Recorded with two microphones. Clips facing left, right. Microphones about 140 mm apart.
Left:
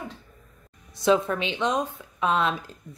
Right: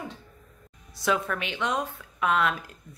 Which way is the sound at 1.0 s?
25° left (ahead or behind).